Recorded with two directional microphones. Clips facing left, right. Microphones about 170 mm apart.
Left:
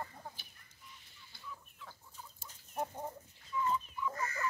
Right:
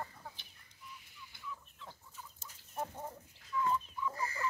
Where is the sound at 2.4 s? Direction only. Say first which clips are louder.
Left 2 dB; 15° left (ahead or behind).